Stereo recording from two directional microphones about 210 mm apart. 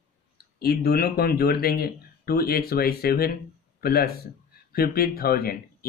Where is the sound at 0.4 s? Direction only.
50° left (ahead or behind).